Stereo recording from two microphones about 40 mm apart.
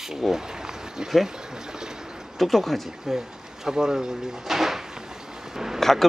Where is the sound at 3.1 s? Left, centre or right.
Centre.